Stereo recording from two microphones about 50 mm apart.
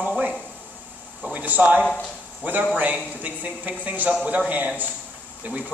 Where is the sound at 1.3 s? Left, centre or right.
Right.